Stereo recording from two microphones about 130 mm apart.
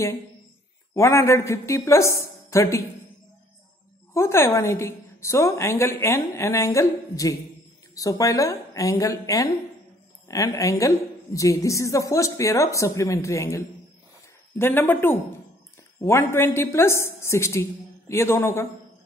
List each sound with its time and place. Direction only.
0.9 s a woman's voice: 20° left (ahead or behind)
4.1 s a woman's voice: 20° left (ahead or behind)